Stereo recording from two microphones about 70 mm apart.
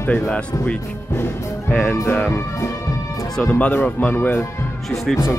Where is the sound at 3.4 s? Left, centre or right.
Left.